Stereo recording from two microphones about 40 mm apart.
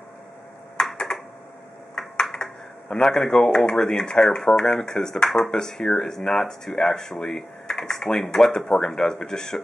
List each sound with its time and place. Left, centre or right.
0.9 s computer keyboard: centre
2.0 s a sound: centre
2.9 s speech: centre